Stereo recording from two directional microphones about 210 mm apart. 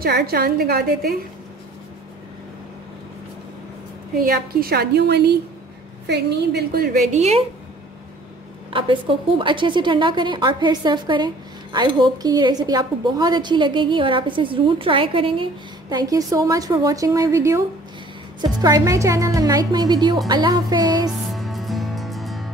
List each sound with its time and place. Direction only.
0.0 s a woman's voice: 50° right (ahead or behind)
4.2 s a woman's voice: 45° right (ahead or behind)
7.2 s a woman's voice: 30° right (ahead or behind)
8.6 s a woman's voice: 25° right (ahead or behind)
21.1 s music: centre (ahead or behind)